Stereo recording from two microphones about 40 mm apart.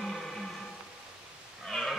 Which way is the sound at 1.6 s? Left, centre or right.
Centre.